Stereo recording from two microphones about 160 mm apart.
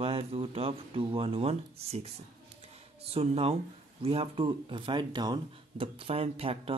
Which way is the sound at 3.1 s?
35° right (ahead or behind).